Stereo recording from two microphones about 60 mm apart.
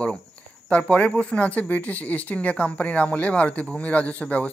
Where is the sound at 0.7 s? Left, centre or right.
Left.